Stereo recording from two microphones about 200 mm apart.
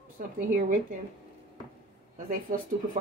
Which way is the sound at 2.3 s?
40° right (ahead or behind).